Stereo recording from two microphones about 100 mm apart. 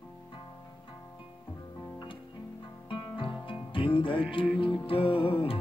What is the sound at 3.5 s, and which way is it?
Music, 60° left (ahead or behind).